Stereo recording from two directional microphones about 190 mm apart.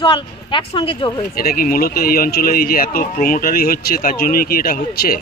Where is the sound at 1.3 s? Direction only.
50° left (ahead or behind).